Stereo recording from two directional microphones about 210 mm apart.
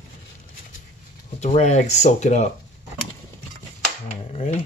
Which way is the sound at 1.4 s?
35° left (ahead or behind).